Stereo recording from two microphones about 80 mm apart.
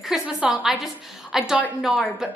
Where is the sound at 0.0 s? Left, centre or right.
Centre.